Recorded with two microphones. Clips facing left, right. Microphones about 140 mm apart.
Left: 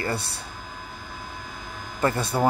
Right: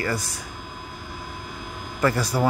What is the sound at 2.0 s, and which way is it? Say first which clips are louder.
Speech: right 1 dB; 25° left (ahead or behind).